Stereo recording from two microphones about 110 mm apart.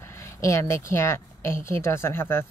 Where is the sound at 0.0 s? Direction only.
25° left (ahead or behind).